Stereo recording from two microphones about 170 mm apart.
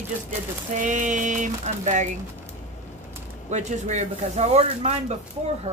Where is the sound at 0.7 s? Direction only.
45° right (ahead or behind).